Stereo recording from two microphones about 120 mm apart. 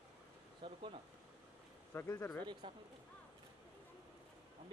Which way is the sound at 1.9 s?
20° left (ahead or behind).